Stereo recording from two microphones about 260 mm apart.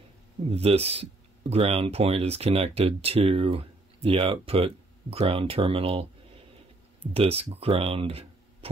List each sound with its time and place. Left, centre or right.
0.5 s speech: right